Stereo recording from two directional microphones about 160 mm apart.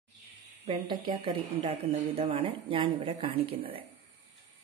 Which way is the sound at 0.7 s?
30° right (ahead or behind).